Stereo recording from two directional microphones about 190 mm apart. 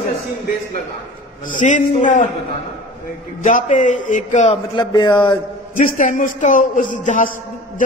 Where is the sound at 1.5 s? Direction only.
40° left (ahead or behind).